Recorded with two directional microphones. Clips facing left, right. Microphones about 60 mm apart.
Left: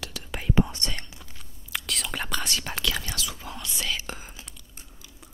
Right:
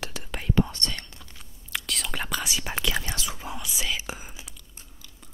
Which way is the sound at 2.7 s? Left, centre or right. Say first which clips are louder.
Right 1 dB; right.